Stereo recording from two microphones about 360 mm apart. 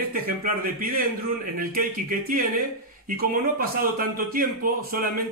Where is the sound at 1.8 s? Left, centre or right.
Right.